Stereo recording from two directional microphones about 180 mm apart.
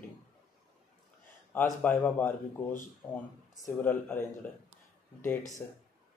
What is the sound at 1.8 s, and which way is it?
Speech, 10° left (ahead or behind).